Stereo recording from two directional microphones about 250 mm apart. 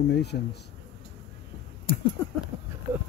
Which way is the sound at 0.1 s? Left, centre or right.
Left.